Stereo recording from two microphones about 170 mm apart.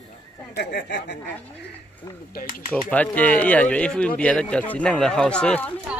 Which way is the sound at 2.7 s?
10° left (ahead or behind).